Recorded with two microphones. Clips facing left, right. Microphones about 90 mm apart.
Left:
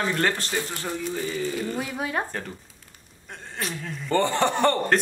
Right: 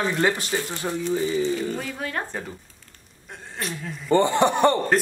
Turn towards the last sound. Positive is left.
turn(degrees=-15)  # may be behind; listen again after turning